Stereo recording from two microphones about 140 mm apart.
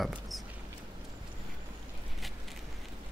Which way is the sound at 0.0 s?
Centre (ahead or behind).